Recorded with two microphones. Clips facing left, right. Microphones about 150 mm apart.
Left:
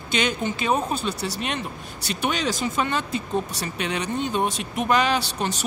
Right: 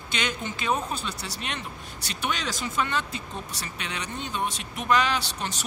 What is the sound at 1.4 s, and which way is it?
Speech, 10° left (ahead or behind).